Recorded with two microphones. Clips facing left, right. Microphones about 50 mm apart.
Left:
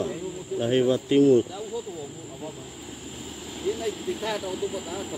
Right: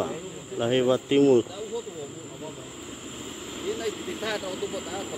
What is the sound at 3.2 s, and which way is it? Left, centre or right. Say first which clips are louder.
Vehicle: left 3 dB; right.